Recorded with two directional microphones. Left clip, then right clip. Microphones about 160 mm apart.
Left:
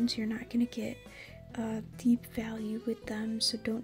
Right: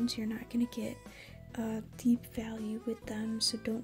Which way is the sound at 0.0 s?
Centre (ahead or behind).